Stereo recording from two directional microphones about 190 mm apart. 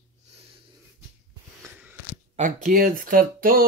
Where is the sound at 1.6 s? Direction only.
10° right (ahead or behind).